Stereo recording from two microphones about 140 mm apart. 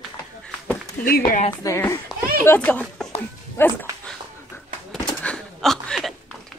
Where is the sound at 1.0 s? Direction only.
90° left.